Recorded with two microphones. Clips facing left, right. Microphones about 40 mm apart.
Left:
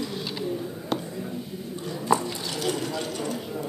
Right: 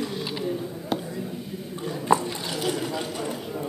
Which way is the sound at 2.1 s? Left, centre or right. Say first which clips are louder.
Right 2 dB; right.